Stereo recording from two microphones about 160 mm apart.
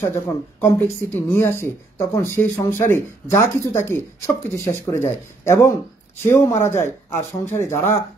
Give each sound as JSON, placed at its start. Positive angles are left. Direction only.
{"t": 0.0, "sound": "speech", "side_deg": 15}